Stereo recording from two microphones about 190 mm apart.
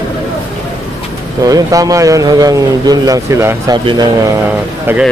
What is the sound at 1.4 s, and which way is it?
A man's voice, 20° right (ahead or behind).